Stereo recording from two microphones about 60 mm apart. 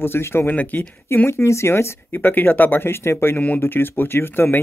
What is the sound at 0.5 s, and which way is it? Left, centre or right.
Speech, left.